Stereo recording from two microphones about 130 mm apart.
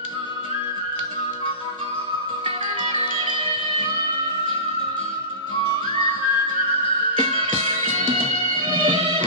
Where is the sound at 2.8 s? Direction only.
45° right (ahead or behind).